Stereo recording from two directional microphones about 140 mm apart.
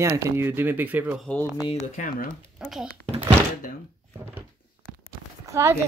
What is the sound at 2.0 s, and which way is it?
Speech, 70° left (ahead or behind).